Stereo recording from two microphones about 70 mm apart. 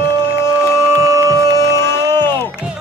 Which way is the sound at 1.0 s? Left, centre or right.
Right.